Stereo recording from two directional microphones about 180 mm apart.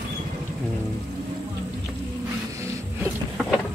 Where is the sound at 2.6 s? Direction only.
15° right (ahead or behind).